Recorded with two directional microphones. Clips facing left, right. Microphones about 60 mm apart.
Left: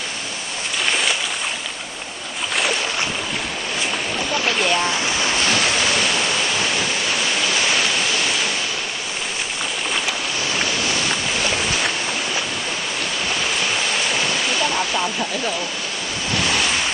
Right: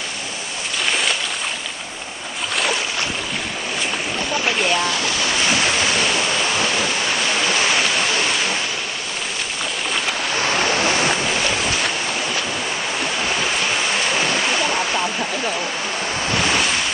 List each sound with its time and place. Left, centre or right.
0.8 s a sound: centre
4.3 s boat: centre
4.8 s speech: left
10.4 s waves: right
15.0 s speech: centre